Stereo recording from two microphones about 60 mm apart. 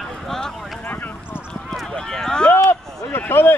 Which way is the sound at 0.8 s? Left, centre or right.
Left.